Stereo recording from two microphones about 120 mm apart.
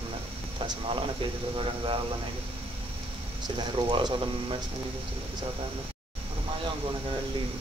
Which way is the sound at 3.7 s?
40° right (ahead or behind).